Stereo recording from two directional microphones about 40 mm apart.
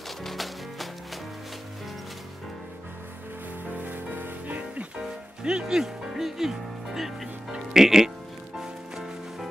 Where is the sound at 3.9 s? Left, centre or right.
Right.